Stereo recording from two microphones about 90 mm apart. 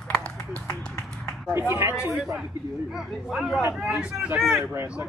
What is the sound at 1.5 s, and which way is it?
Speech, 30° right (ahead or behind).